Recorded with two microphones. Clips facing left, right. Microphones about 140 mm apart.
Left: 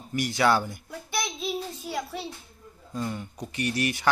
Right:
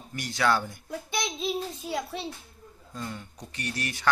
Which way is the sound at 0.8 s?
20° right (ahead or behind).